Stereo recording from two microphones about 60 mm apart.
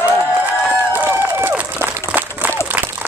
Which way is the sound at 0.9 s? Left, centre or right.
Right.